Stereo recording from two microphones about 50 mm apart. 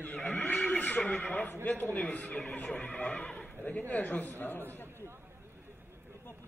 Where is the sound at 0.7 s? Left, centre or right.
Left.